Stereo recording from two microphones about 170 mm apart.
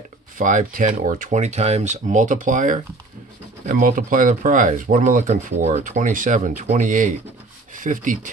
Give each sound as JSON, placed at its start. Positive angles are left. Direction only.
{"t": 0.4, "sound": "speech", "side_deg": -50}